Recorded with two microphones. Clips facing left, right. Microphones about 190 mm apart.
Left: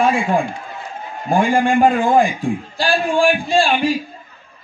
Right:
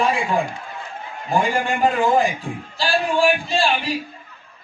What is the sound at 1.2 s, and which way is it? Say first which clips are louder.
A man's voice: left 5 dB; 50° left (ahead or behind).